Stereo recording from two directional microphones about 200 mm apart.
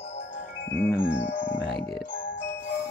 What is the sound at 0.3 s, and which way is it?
Chime, 60° left (ahead or behind).